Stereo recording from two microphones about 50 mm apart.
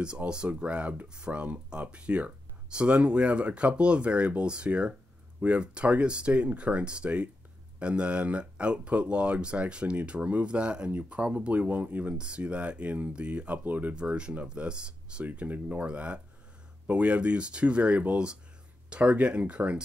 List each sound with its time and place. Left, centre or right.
0.0 s speech: centre
12.2 s speech: right
13.9 s speech: right
15.2 s speech: right